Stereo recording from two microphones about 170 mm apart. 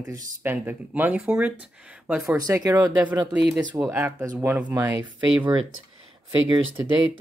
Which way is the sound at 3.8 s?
10° right (ahead or behind).